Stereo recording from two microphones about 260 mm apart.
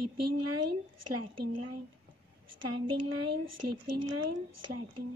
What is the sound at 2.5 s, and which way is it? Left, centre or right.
Speech, right.